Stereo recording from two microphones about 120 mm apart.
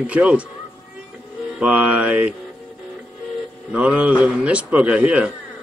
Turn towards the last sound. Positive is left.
turn(degrees=-10)  # may be behind; listen again after turning